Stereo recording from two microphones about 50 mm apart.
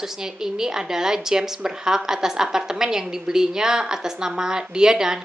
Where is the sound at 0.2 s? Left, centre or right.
Centre.